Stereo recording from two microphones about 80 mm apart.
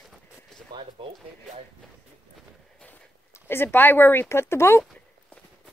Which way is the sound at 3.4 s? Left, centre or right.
Left.